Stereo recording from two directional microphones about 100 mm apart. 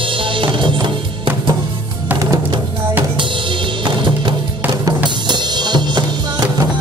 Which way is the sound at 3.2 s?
55° right (ahead or behind).